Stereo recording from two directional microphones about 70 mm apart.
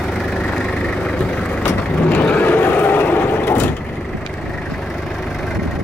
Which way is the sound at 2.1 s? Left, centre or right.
Left.